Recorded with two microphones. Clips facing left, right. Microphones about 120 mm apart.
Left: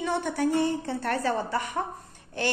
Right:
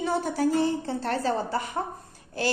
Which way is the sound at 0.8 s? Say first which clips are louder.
Even; 25° right (ahead or behind).